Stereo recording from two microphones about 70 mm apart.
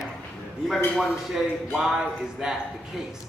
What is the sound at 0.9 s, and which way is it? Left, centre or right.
Speech, centre.